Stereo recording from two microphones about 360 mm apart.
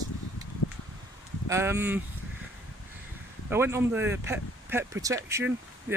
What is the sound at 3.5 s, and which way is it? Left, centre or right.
Speech, centre.